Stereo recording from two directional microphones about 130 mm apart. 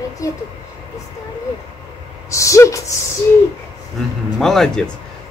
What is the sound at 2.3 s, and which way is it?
Speech, 25° left (ahead or behind).